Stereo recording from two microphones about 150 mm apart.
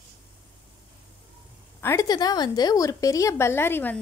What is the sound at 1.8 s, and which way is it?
A woman's voice, 20° left (ahead or behind).